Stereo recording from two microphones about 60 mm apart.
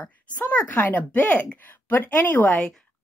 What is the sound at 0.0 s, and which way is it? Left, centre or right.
Speech, left.